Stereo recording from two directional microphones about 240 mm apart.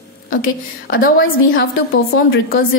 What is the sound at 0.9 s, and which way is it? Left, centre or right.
Speech, left.